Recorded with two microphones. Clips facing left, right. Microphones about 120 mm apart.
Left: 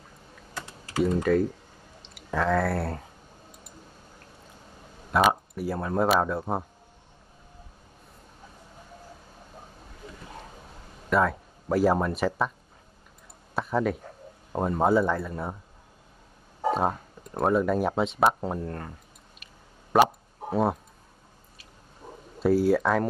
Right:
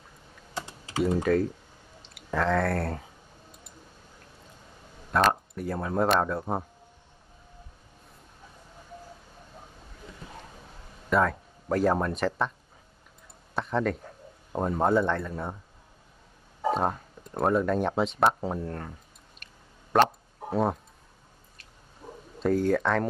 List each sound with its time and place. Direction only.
0.6 s typing: 20° right (ahead or behind)
1.0 s speech: 5° right (ahead or behind)
5.1 s speech: 5° left (ahead or behind)
11.1 s speech: centre (ahead or behind)
13.6 s speech: 5° left (ahead or behind)
16.7 s speech: 5° left (ahead or behind)
19.4 s a sound: 5° left (ahead or behind)
22.4 s speech: 5° left (ahead or behind)